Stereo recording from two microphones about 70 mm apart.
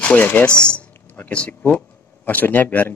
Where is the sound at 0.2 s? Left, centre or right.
Left.